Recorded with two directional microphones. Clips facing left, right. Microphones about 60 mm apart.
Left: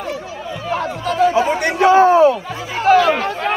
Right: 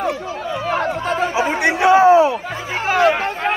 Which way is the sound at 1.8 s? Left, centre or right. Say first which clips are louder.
Left 1 dB; centre.